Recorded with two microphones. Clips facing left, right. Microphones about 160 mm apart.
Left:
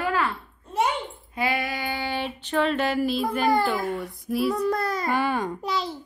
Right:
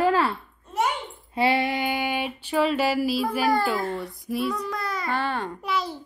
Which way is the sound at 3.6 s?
Centre (ahead or behind).